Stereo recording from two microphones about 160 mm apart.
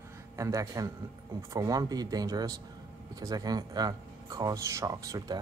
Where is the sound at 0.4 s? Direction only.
20° right (ahead or behind).